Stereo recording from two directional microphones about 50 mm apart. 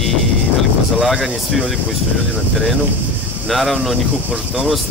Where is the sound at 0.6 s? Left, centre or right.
Centre.